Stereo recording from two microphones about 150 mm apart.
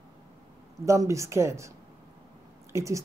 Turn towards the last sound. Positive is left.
turn(degrees=-20)  # may be behind; listen again after turning